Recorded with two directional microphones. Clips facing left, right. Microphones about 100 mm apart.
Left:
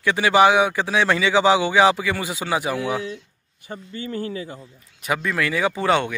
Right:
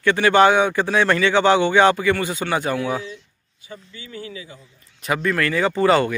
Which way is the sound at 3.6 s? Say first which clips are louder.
Left 7 dB; 45° left (ahead or behind).